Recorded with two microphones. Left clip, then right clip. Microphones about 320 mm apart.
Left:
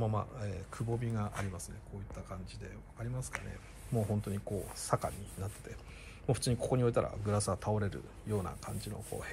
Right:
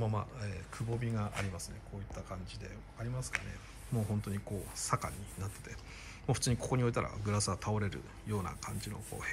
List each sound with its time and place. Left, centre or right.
0.0 s speech: centre